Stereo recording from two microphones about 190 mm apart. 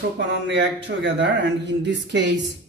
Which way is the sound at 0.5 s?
70° right (ahead or behind).